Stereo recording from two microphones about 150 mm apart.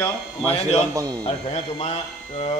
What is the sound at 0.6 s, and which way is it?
A man's voice, 45° left (ahead or behind).